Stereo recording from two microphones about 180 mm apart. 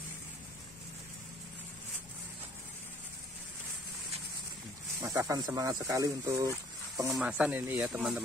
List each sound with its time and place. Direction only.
5.0 s speech: 20° right (ahead or behind)